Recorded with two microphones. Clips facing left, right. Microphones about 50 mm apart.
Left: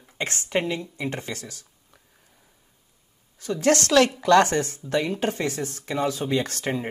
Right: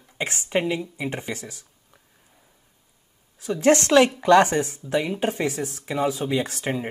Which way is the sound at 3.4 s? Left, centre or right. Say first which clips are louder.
Right 3 dB; centre.